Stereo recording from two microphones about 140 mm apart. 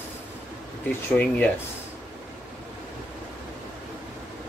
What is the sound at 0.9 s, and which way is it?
Speech, 10° left (ahead or behind).